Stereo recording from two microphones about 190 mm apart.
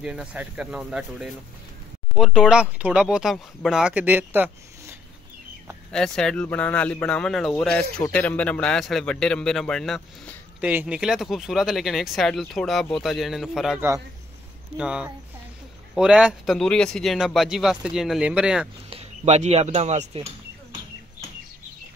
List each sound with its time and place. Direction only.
0.0 s speech: 5° right (ahead or behind)
5.9 s speech: 5° left (ahead or behind)
18.9 s speech: 35° right (ahead or behind)